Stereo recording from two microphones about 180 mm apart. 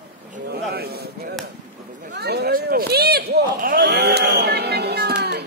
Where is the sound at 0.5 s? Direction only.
60° right (ahead or behind).